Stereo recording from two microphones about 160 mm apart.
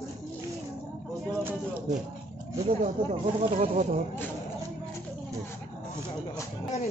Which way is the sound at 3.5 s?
45° right (ahead or behind).